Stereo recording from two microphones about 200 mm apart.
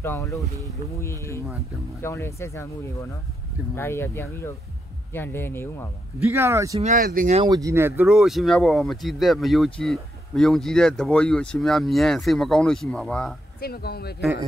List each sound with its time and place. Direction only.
0.0 s speech: 15° left (ahead or behind)
6.1 s speech: 10° right (ahead or behind)
6.8 s speech: 40° right (ahead or behind)
7.3 s speech: 20° right (ahead or behind); by 13.3 s 5° left (ahead or behind)
13.6 s speech: 50° left (ahead or behind)